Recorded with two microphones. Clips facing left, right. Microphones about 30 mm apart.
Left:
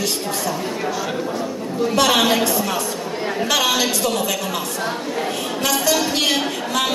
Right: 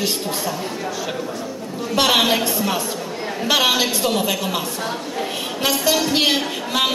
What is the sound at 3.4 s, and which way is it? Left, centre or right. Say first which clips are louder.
A man's voice: right 2 dB; right.